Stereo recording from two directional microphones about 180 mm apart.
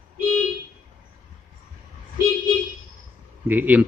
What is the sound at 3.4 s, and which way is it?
Speech, 10° right (ahead or behind).